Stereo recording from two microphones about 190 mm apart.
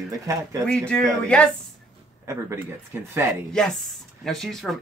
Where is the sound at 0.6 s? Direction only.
5° left (ahead or behind).